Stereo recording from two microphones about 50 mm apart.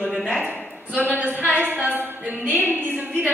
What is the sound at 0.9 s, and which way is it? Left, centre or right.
A woman's voice, right.